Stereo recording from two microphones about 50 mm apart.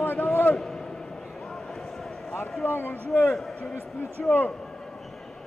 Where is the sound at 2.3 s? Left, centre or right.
Left.